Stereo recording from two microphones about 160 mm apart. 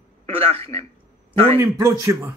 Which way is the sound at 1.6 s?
20° right (ahead or behind).